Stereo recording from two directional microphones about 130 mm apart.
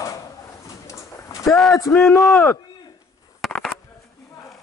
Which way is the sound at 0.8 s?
25° left (ahead or behind).